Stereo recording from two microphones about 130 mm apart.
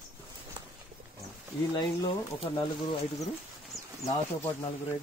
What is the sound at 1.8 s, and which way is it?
Speech, 40° left (ahead or behind).